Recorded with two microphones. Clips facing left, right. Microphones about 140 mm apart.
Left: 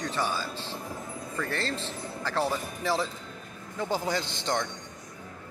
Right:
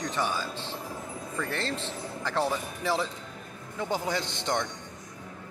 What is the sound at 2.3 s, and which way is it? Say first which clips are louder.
Speech: even; 5° left (ahead or behind).